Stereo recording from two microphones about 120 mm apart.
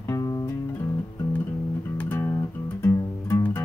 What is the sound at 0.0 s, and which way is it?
Music, 25° left (ahead or behind).